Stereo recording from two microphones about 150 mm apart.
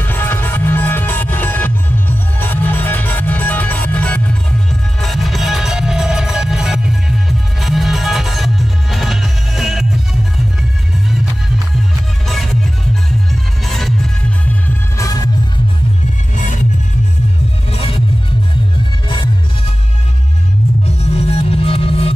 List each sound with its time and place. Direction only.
0.0 s music: 15° left (ahead or behind)
13.3 s music: centre (ahead or behind)
17.6 s music: 40° left (ahead or behind)
20.8 s music: 40° left (ahead or behind)